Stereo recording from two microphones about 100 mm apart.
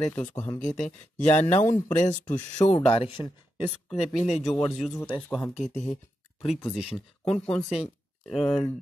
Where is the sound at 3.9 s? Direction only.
90° left.